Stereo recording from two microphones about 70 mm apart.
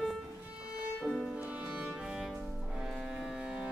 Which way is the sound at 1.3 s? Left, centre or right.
Right.